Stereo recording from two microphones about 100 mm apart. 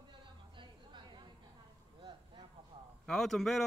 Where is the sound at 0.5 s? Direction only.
50° right (ahead or behind).